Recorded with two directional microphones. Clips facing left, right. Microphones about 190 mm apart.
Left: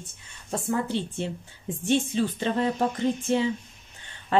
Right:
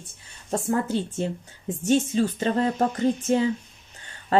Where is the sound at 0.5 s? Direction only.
45° right (ahead or behind).